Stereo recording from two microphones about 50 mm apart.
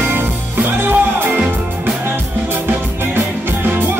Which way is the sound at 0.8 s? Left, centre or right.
Right.